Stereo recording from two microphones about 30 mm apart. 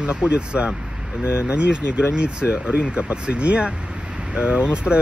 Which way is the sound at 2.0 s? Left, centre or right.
Right.